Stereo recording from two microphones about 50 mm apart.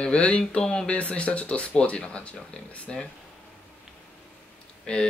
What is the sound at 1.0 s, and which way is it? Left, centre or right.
Speech, left.